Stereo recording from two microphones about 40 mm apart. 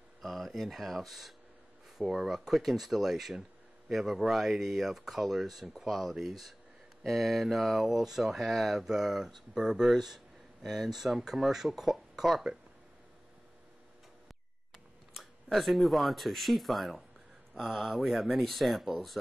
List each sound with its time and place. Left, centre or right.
0.2 s a sound: centre
0.5 s speech: centre
15.1 s speech: centre